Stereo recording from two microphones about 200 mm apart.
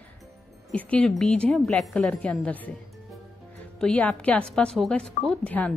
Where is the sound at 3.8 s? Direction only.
5° left (ahead or behind).